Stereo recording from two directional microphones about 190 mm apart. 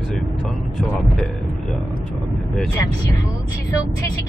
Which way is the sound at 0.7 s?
Centre (ahead or behind).